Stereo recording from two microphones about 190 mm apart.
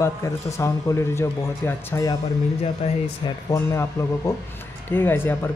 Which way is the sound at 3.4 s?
15° left (ahead or behind).